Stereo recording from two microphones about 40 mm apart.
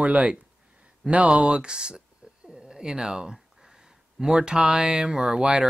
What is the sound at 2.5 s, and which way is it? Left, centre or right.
Speech, centre.